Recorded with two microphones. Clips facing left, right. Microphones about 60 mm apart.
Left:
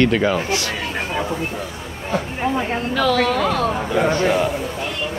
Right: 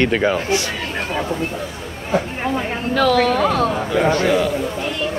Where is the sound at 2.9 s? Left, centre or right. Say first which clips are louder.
Right 3 dB; right.